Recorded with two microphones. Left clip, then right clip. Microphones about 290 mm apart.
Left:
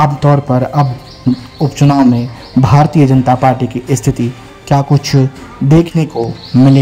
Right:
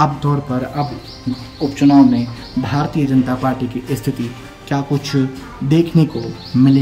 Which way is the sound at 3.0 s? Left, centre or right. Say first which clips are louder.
Left 8 dB; centre.